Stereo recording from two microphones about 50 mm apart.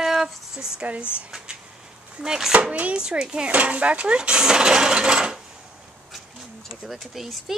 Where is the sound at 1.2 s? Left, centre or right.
Centre.